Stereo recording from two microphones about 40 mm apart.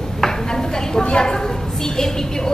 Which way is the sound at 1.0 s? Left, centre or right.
Left.